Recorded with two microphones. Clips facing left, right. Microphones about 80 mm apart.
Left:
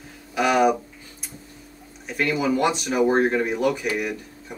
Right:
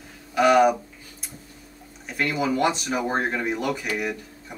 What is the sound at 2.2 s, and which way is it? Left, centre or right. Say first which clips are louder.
Speech: left 1 dB; centre.